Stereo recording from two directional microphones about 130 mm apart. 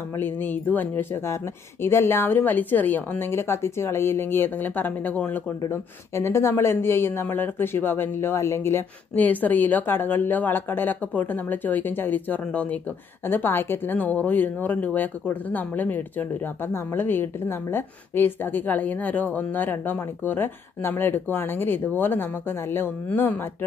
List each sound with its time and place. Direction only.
0.2 s speech: 15° left (ahead or behind)